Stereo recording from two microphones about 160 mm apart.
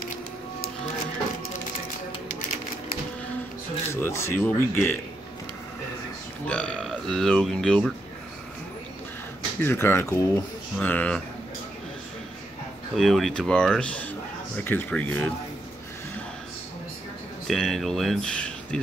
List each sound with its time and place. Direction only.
3.9 s speech: 15° left (ahead or behind)
6.4 s speech: 5° left (ahead or behind)
9.6 s speech: 15° left (ahead or behind)
12.9 s speech: centre (ahead or behind)
17.5 s speech: centre (ahead or behind)